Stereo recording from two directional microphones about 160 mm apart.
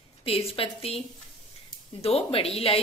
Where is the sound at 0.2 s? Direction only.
35° left (ahead or behind).